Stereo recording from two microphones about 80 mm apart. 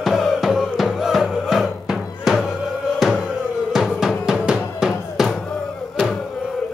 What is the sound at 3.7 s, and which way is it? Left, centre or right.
Music, centre.